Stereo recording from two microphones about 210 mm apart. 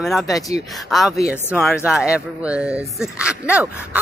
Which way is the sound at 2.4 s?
5° right (ahead or behind).